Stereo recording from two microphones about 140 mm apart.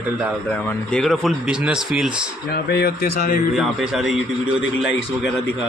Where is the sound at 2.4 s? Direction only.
90° left.